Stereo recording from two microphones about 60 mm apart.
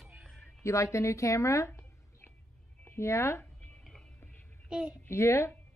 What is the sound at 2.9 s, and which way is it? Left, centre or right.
Speech, left.